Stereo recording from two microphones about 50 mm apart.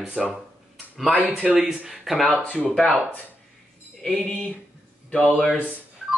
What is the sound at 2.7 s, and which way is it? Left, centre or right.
Speech, centre.